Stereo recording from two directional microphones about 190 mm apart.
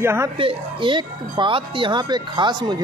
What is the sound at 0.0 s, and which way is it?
Speech, 15° right (ahead or behind).